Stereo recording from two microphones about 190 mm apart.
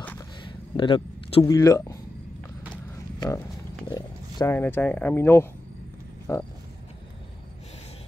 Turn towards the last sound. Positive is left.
turn(degrees=15)  # may be behind; listen again after turning